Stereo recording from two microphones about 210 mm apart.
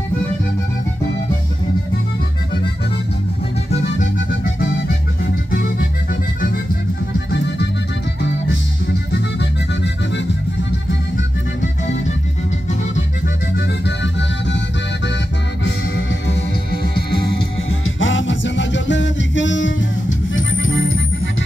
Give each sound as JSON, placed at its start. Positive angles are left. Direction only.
{"t": 4.0, "sound": "music", "side_deg": 60}
{"t": 5.2, "sound": "music", "side_deg": 50}
{"t": 7.2, "sound": "music", "side_deg": 55}
{"t": 10.1, "sound": "music", "side_deg": 60}
{"t": 13.6, "sound": "music", "side_deg": 55}
{"t": 15.6, "sound": "music", "side_deg": 60}
{"t": 17.6, "sound": "music", "side_deg": 70}